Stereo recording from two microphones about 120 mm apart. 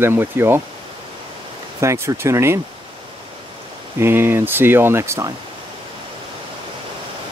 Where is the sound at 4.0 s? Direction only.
20° right (ahead or behind).